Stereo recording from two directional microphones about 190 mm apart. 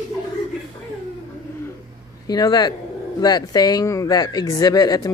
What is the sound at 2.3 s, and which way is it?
Speech, 20° left (ahead or behind).